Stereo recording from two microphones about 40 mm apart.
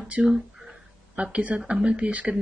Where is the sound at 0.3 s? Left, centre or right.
Centre.